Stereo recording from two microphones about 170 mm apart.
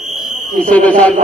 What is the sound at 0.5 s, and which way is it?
Speech, 5° left (ahead or behind).